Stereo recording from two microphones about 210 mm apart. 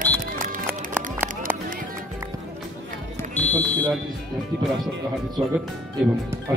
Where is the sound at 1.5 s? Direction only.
10° right (ahead or behind).